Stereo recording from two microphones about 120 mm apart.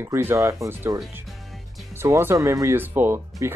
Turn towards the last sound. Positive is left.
turn(degrees=-20)  # may be behind; listen again after turning